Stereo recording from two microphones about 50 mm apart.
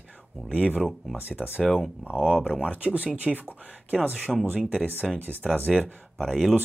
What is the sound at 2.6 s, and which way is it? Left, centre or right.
Speech, right.